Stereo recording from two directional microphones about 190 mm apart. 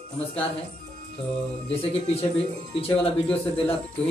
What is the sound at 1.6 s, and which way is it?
A man's voice, 30° left (ahead or behind).